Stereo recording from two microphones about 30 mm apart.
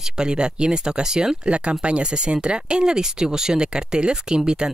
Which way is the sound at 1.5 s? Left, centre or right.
Right.